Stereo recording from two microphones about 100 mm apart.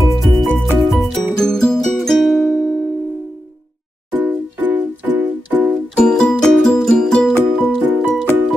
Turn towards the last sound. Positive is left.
turn(degrees=5)  # may be behind; listen again after turning